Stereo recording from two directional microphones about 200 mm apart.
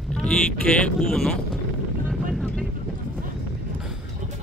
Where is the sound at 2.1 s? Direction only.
Centre (ahead or behind).